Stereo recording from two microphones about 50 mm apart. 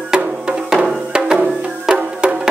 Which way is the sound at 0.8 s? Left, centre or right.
Centre.